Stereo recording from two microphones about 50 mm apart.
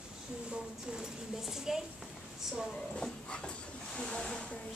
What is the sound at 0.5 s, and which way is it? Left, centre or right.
A woman's voice, centre.